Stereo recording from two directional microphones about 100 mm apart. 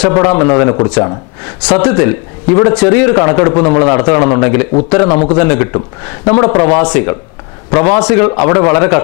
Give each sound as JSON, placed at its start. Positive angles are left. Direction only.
{"t": 0.0, "sound": "a man's voice", "side_deg": 20}